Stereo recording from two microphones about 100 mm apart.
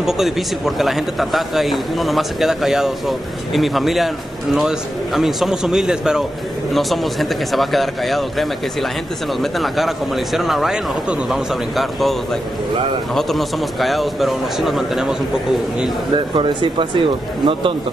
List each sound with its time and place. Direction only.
0.0 s a man's voice: 5° right (ahead or behind)
16.3 s speech: 60° right (ahead or behind)